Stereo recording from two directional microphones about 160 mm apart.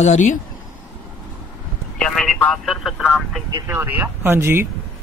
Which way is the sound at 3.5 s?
15° right (ahead or behind).